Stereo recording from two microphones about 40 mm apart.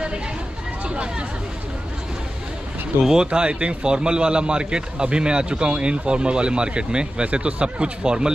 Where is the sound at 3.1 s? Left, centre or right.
Right.